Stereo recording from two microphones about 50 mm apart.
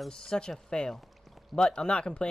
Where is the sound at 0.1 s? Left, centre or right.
Centre.